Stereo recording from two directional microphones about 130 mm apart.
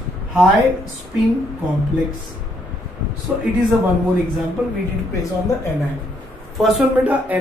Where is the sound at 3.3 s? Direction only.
5° right (ahead or behind).